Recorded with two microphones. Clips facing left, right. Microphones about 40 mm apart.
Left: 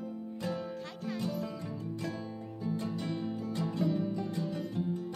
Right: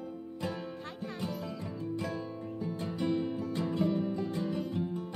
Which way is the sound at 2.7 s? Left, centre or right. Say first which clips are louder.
Right 7 dB; centre.